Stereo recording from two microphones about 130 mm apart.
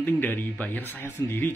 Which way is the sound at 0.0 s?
15° left (ahead or behind).